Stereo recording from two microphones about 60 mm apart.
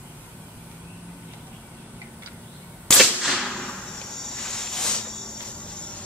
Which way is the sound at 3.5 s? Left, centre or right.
Centre.